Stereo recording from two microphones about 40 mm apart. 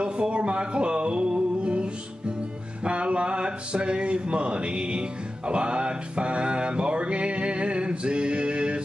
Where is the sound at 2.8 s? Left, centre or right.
Right.